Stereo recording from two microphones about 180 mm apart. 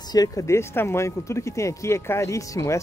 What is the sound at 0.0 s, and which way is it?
Speech, 20° left (ahead or behind).